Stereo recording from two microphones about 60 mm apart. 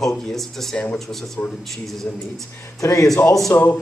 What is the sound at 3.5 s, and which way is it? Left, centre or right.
Speech, left.